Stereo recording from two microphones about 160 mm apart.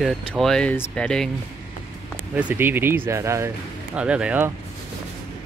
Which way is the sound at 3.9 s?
5° right (ahead or behind).